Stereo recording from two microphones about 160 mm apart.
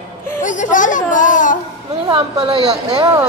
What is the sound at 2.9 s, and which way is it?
Speech, 20° right (ahead or behind).